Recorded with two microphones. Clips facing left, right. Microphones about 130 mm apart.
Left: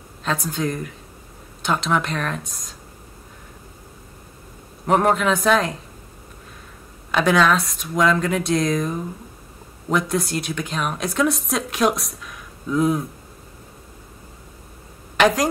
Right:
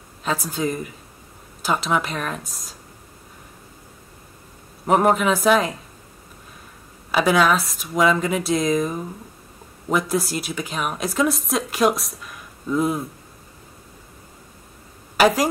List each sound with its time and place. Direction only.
0.2 s speech: 5° right (ahead or behind)
4.8 s speech: 5° right (ahead or behind)
7.1 s speech: 5° right (ahead or behind)
15.1 s a woman's voice: 5° right (ahead or behind)